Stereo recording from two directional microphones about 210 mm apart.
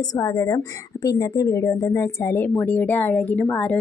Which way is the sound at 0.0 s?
15° left (ahead or behind).